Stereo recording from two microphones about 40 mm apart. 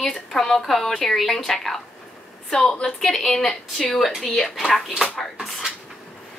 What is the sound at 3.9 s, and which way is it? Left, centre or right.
Speech, centre.